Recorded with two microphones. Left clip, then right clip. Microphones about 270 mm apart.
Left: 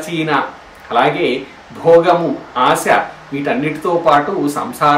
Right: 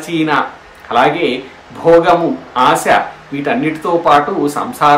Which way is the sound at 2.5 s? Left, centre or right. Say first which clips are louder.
Right 2 dB; centre.